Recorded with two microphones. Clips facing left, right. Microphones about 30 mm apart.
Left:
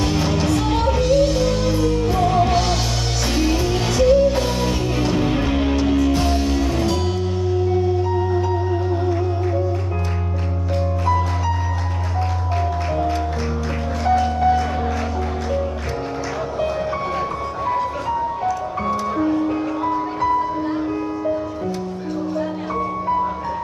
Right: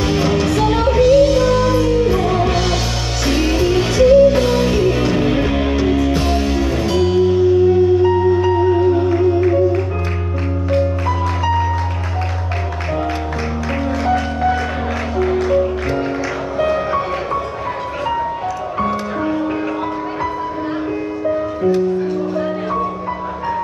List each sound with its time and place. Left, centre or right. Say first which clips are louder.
0.0 s music: right 4 dB; right
9.1 s music: right 8 dB; right
14.0 s music: left 2 dB; right
18.8 s music: right 4 dB; right